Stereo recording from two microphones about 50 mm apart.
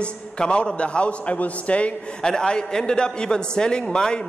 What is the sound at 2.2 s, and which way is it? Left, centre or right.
A man's voice, centre.